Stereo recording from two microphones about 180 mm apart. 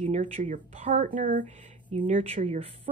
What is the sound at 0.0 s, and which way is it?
Speech, 40° right (ahead or behind).